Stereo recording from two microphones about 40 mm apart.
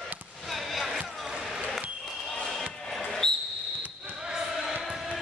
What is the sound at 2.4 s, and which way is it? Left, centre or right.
Basketball bounce, centre.